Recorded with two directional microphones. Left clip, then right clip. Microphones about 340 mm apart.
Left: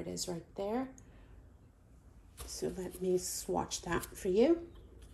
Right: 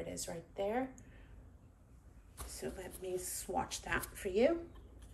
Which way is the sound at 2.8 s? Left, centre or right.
Centre.